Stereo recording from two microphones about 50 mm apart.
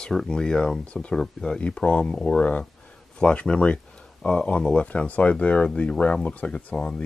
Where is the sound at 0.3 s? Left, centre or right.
Centre.